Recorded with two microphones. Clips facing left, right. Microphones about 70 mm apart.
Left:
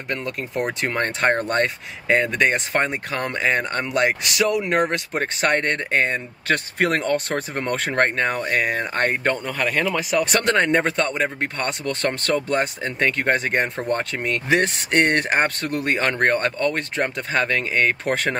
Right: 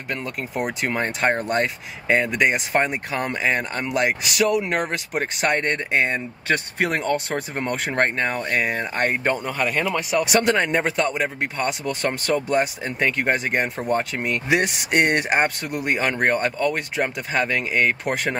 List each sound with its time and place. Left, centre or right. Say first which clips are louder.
0.1 s speech: left 1 dB; centre